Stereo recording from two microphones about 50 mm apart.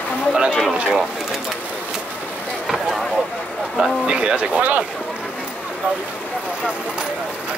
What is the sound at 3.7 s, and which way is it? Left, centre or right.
Speech, centre.